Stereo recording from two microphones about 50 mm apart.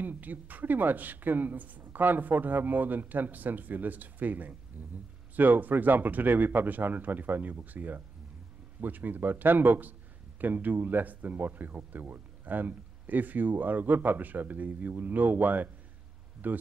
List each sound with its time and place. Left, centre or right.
0.0 s speech: right